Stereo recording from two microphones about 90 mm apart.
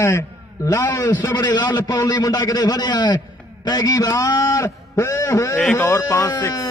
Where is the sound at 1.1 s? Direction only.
50° left (ahead or behind); by 6.5 s 35° left (ahead or behind).